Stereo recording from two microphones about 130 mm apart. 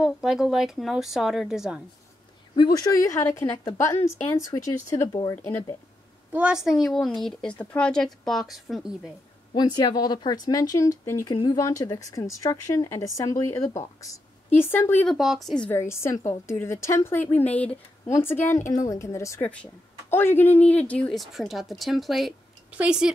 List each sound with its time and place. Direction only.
0.0 s a woman's voice: 5° right (ahead or behind)
2.5 s a woman's voice: 30° left (ahead or behind)
6.3 s a woman's voice: 5° right (ahead or behind)
9.5 s a woman's voice: 35° left (ahead or behind); by 15.0 s 15° left (ahead or behind)
15.0 s a woman's voice: centre (ahead or behind)
15.7 s a woman's voice: 20° left (ahead or behind)
21.2 s a woman's voice: centre (ahead or behind)